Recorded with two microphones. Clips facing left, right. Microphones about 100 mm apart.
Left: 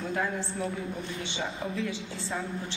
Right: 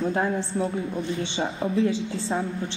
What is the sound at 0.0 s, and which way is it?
A man's voice, 30° right (ahead or behind).